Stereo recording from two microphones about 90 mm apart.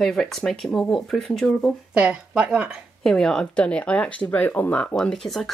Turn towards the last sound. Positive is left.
turn(degrees=5)  # may be behind; listen again after turning